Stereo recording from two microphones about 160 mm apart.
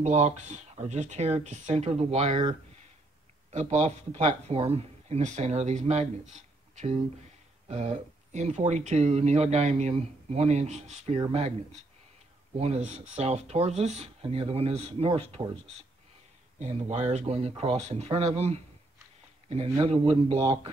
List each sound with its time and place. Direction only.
0.0 s speech: 45° right (ahead or behind)
3.5 s speech: 40° right (ahead or behind)
12.5 s speech: 45° right (ahead or behind)
16.5 s speech: 45° right (ahead or behind)